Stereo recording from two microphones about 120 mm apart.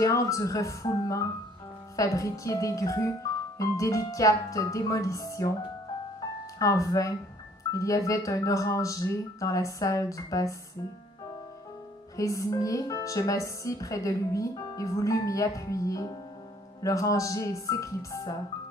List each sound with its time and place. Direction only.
0.0 s speech: 25° left (ahead or behind)
6.6 s speech: 25° left (ahead or behind)
12.2 s speech: 30° left (ahead or behind)